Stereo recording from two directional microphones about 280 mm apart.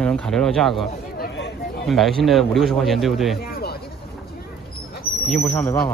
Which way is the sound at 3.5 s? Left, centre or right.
Left.